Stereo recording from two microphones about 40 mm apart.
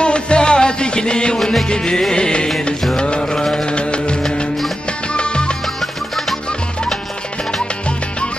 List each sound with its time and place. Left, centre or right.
0.0 s music: left
1.4 s music: centre
1.7 s music: centre
5.8 s music: centre